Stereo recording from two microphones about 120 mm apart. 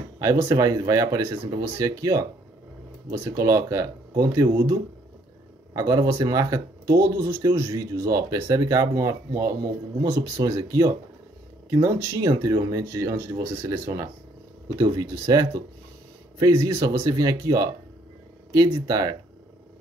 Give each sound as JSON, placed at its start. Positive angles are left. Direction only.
{"t": 0.2, "sound": "speech", "side_deg": -25}
{"t": 14.8, "sound": "speech", "side_deg": -35}